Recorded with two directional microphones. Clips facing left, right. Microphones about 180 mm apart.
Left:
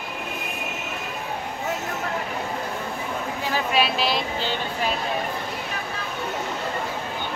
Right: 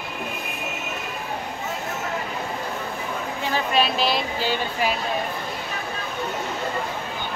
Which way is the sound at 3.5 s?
5° left (ahead or behind).